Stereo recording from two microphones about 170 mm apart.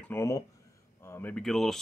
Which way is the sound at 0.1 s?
15° left (ahead or behind).